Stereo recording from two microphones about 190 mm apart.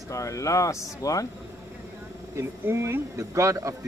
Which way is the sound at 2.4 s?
15° right (ahead or behind).